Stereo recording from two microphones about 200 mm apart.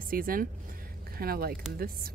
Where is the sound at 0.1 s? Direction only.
45° right (ahead or behind).